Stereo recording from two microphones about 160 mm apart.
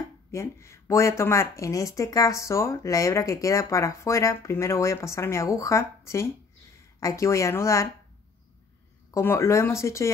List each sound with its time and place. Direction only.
0.3 s speech: 15° left (ahead or behind)
9.1 s speech: 15° left (ahead or behind)